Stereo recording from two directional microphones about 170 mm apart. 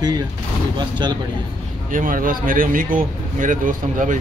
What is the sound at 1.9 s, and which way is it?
Speech, 55° right (ahead or behind).